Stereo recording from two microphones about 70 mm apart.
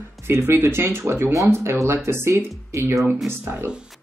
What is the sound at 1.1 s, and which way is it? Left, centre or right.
Speech, right.